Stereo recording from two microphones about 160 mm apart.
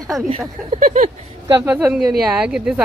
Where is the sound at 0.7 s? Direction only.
50° right (ahead or behind).